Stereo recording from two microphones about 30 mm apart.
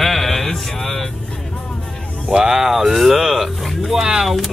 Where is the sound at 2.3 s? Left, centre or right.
Right.